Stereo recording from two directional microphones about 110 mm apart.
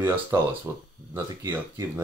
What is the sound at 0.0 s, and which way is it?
Speech, 20° right (ahead or behind).